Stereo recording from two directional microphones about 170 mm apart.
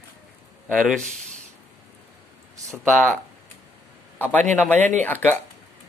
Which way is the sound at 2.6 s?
5° left (ahead or behind).